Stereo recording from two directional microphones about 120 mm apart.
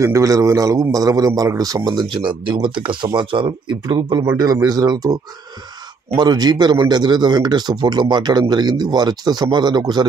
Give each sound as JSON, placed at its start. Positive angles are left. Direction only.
{"t": 0.0, "sound": "a man's voice", "side_deg": -25}